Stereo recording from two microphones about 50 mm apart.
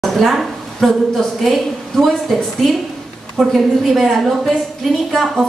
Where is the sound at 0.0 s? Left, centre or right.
Centre.